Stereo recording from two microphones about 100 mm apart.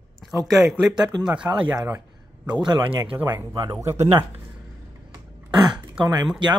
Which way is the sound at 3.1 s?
25° right (ahead or behind).